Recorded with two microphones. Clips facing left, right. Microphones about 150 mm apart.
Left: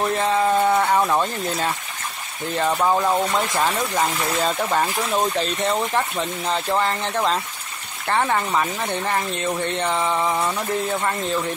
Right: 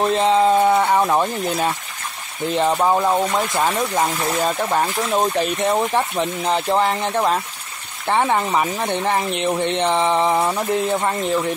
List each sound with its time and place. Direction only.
0.0 s a sound: 20° right (ahead or behind)
2.5 s speech: 20° right (ahead or behind)
5.1 s speech: 15° right (ahead or behind)